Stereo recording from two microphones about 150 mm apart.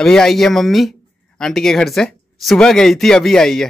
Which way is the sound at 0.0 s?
5° left (ahead or behind).